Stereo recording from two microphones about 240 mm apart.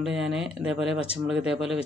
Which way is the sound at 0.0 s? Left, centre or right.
Centre.